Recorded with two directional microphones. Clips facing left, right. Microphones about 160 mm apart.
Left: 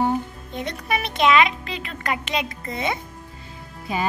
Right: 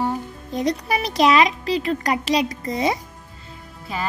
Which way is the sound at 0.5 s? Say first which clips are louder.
Right 6 dB; 35° right (ahead or behind).